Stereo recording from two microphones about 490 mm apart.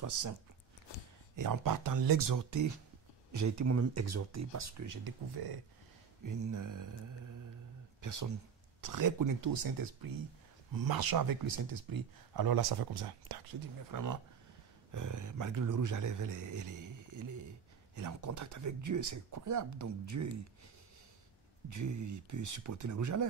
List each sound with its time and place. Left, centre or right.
0.0 s speech: right
1.3 s speech: right
6.2 s speech: right
13.9 s a man's voice: right
21.6 s speech: right